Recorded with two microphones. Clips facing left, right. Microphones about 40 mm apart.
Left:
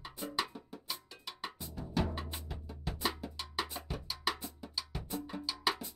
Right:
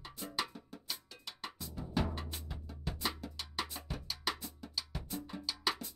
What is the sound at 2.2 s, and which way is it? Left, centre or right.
Music, centre.